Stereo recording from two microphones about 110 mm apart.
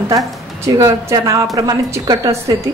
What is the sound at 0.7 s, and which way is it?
A woman's voice, 30° right (ahead or behind).